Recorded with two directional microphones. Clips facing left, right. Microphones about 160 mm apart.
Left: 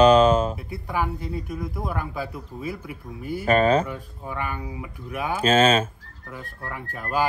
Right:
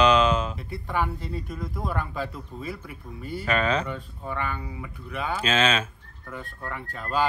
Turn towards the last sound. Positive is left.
turn(degrees=10)  # may be behind; listen again after turning